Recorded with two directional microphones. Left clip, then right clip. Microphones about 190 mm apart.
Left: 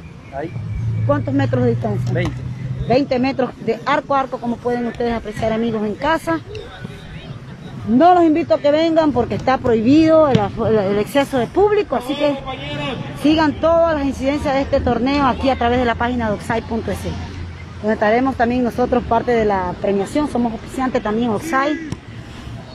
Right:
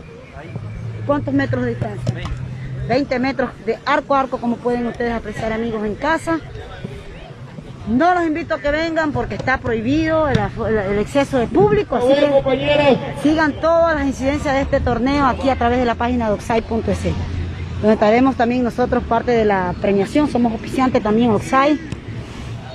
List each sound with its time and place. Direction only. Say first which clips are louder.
1.0 s a woman's voice: even; centre (ahead or behind)
2.9 s speech: left 2 dB; 10° left (ahead or behind)
3.8 s a woman's voice: right 1 dB; centre (ahead or behind)
8.0 s speech: left 4 dB; 15° left (ahead or behind)
12.0 s a man's voice: right 6 dB; 50° right (ahead or behind)
13.3 s a woman's voice: left 1 dB; 10° left (ahead or behind); by 21.7 s 10° right (ahead or behind)